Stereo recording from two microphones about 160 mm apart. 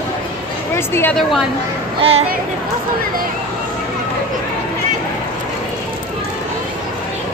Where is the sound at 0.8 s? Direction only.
15° left (ahead or behind).